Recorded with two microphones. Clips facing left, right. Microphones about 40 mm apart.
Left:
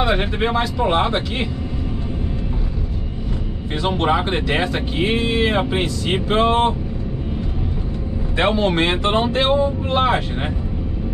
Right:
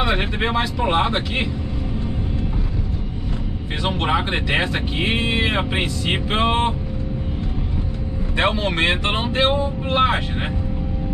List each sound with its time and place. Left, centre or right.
0.0 s speech: centre
4.2 s speech: centre
4.9 s speech: right
8.4 s speech: centre
8.7 s speech: right